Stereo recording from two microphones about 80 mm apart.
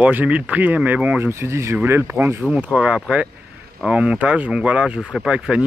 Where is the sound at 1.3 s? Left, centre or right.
Right.